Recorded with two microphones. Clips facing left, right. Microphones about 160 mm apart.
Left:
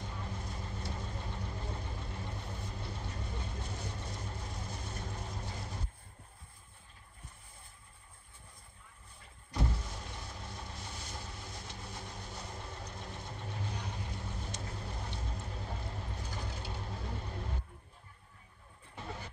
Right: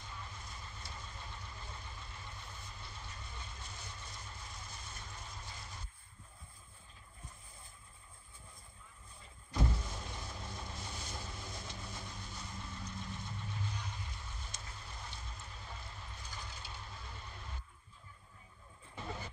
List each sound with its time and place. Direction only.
0.0 s vehicle: 60° left (ahead or behind)
9.6 s vehicle: 20° right (ahead or behind)
11.1 s vehicle: 35° left (ahead or behind)
11.9 s vehicle: 60° left (ahead or behind)